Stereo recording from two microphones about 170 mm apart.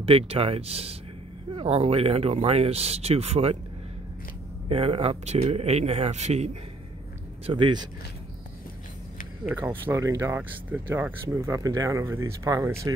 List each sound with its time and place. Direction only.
0.0 s speech: 35° right (ahead or behind)
4.6 s speech: 35° right (ahead or behind)
7.4 s speech: 30° right (ahead or behind)
9.5 s speech: 10° right (ahead or behind)